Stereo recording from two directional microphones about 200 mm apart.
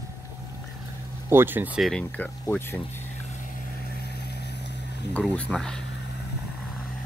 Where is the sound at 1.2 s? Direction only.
10° right (ahead or behind); by 2.8 s 10° left (ahead or behind).